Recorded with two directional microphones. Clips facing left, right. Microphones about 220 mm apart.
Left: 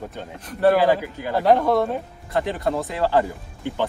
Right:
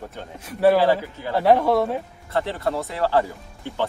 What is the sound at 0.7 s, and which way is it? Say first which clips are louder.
Speech: even; 15° left (ahead or behind).